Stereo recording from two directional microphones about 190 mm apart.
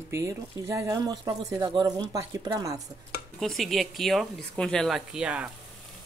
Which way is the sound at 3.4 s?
Centre (ahead or behind).